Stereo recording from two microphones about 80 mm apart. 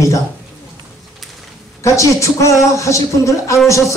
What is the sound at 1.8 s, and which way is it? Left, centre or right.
Speech, left.